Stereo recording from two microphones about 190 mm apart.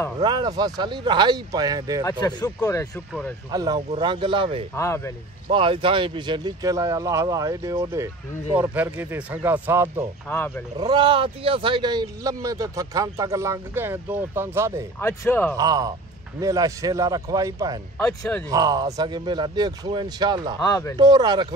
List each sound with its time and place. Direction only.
0.2 s speech: 20° right (ahead or behind)
2.0 s speech: 20° left (ahead or behind)
3.1 s speech: 5° left (ahead or behind)
3.5 s speech: 20° right (ahead or behind)
4.7 s speech: 15° left (ahead or behind)
5.5 s speech: 25° right (ahead or behind)
10.2 s speech: 10° left (ahead or behind)
10.8 s speech: 25° right (ahead or behind)
15.0 s speech: 10° left (ahead or behind)
15.5 s speech: 20° right (ahead or behind)
17.9 s speech: 5° left (ahead or behind)
18.5 s speech: 20° right (ahead or behind)
20.6 s speech: 15° left (ahead or behind)
21.0 s speech: 20° right (ahead or behind)